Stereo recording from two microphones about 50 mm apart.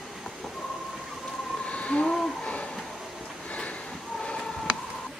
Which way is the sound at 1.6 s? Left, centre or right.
Left.